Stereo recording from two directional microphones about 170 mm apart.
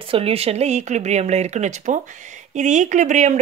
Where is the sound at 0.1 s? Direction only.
35° right (ahead or behind).